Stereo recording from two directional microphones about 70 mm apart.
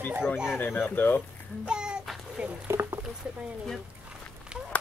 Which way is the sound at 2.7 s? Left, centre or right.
Right.